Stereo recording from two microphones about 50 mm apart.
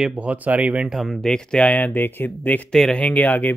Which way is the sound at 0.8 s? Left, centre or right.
Centre.